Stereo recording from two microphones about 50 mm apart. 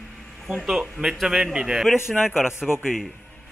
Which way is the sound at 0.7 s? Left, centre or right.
Centre.